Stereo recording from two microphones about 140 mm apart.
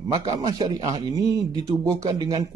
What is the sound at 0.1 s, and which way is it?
A man's voice, 25° right (ahead or behind).